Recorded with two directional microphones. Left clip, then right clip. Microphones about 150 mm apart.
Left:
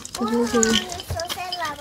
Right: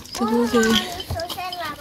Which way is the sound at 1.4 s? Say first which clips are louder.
Left 1 dB; 55° left (ahead or behind).